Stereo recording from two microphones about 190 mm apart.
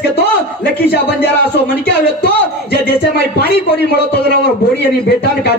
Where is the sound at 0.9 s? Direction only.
55° left (ahead or behind).